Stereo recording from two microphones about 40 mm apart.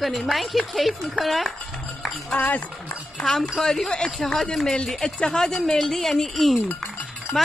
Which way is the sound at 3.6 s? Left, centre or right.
Centre.